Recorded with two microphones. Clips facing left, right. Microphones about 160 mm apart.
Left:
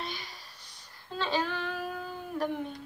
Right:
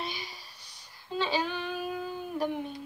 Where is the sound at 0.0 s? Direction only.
5° right (ahead or behind).